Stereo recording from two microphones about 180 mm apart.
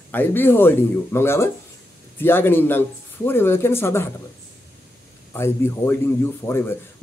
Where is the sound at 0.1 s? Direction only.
10° left (ahead or behind).